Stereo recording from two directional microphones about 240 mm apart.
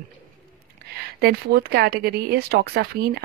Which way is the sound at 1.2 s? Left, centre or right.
Right.